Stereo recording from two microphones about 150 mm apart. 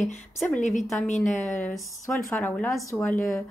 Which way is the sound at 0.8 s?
Centre (ahead or behind).